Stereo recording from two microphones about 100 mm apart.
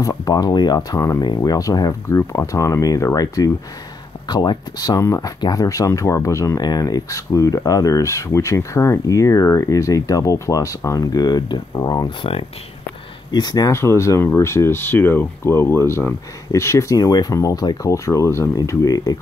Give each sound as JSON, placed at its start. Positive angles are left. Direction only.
{"t": 0.0, "sound": "speech", "side_deg": 35}
{"t": 1.2, "sound": "speech", "side_deg": 45}
{"t": 4.3, "sound": "speech", "side_deg": 45}
{"t": 13.3, "sound": "speech", "side_deg": 45}
{"t": 13.7, "sound": "speech", "side_deg": 30}